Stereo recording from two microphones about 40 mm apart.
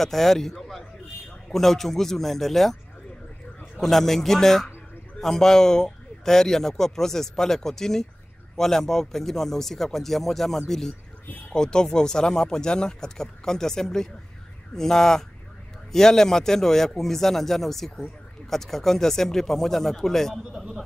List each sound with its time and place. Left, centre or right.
0.0 s a man's voice: centre
3.8 s speech: centre